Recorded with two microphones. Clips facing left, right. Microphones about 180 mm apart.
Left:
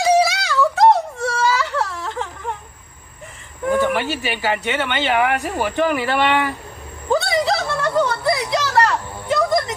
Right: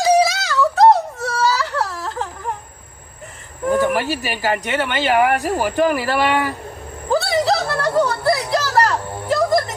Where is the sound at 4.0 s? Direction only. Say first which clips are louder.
Right 1 dB; 40° right (ahead or behind).